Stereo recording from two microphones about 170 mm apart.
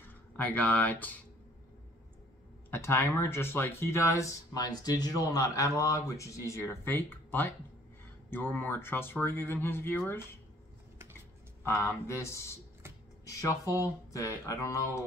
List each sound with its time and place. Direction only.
0.0 s speech: 10° left (ahead or behind)
2.7 s speech: 15° left (ahead or behind)
11.6 s speech: 15° left (ahead or behind)